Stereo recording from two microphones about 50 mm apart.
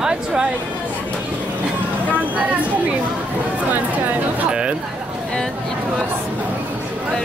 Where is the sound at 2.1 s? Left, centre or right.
Right.